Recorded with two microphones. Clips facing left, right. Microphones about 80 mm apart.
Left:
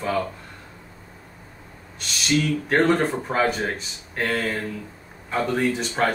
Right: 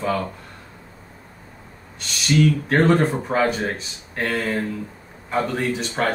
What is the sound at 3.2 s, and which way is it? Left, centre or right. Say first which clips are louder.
Speech: right 2 dB; centre.